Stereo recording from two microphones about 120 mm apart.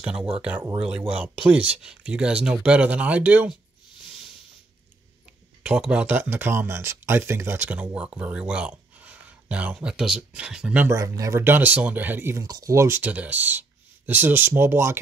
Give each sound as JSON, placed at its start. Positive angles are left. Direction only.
{"t": 0.0, "sound": "speech", "side_deg": -10}
{"t": 5.6, "sound": "speech", "side_deg": -10}
{"t": 10.9, "sound": "speech", "side_deg": -25}
{"t": 12.4, "sound": "speech", "side_deg": -30}